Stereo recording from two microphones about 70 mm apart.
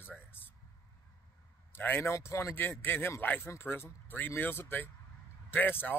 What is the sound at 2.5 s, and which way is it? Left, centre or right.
Speech, left.